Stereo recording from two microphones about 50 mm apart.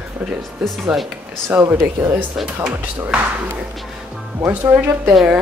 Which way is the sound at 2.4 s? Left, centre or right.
Centre.